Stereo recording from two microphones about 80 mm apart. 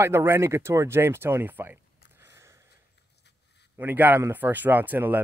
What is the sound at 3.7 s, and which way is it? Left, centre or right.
Speech, right.